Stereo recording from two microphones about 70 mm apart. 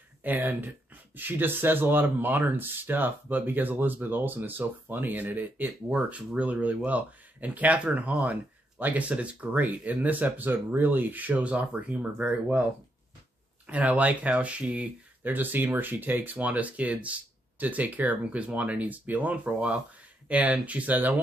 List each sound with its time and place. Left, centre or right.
0.2 s speech: right
13.7 s speech: right